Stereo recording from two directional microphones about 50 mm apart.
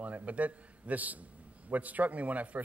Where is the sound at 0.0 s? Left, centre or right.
Right.